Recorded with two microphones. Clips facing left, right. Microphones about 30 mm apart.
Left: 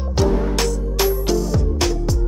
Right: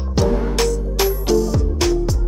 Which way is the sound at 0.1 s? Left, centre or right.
Centre.